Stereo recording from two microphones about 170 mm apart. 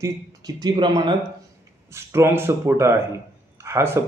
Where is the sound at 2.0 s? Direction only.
15° right (ahead or behind).